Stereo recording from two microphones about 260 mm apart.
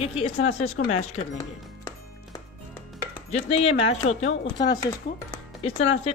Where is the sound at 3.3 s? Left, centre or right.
Left.